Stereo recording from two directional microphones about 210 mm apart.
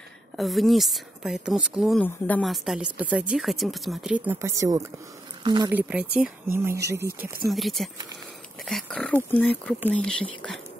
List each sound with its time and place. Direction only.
0.4 s speech: centre (ahead or behind); by 5.7 s 25° right (ahead or behind)
5.7 s speech: 5° right (ahead or behind)
7.5 s speech: centre (ahead or behind)